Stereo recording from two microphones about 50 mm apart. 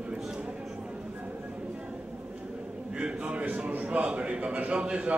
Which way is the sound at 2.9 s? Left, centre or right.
Right.